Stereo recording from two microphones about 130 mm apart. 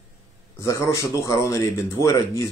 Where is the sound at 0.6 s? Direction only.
25° left (ahead or behind).